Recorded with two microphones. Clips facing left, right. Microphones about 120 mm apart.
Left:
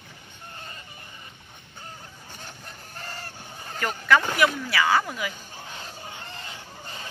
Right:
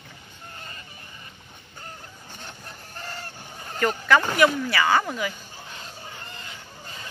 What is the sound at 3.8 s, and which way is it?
Speech, centre (ahead or behind).